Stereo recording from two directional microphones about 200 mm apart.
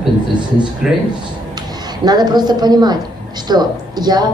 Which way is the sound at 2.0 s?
20° right (ahead or behind).